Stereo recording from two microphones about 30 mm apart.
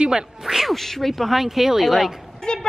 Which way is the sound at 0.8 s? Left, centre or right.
Centre.